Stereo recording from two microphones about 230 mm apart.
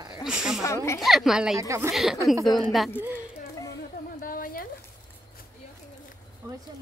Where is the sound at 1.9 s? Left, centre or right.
Centre.